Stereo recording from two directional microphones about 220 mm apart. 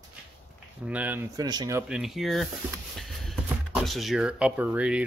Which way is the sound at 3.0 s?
Centre (ahead or behind).